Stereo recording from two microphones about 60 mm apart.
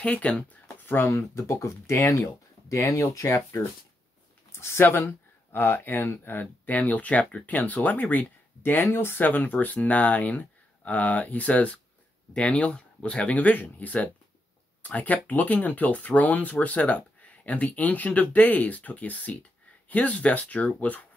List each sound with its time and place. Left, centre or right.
0.0 s speech: left
0.7 s a sound: left
1.0 s speech: left
6.4 s speech: left